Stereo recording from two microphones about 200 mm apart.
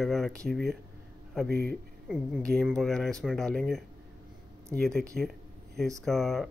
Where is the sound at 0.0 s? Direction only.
Centre (ahead or behind).